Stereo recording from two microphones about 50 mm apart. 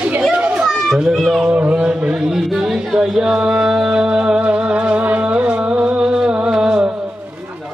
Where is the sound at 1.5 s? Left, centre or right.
Right.